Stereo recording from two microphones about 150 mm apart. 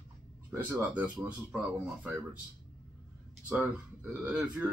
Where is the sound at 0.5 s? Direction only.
10° right (ahead or behind).